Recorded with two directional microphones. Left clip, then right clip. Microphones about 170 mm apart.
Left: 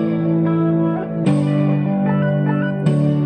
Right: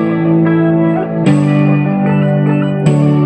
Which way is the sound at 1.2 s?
15° left (ahead or behind).